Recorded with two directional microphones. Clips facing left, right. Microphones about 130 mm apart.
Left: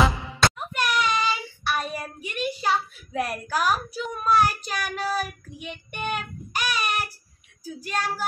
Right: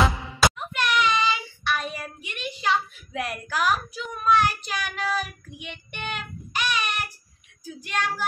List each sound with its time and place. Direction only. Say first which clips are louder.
0.4 s a sound: right 1 dB; 5° right (ahead or behind)
0.7 s child singing: right 2 dB; 40° left (ahead or behind)
2.6 s a child's voice: right 3 dB; 40° left (ahead or behind)
6.1 s child singing: left 2 dB; 40° left (ahead or behind)
7.6 s speech: even; 40° left (ahead or behind)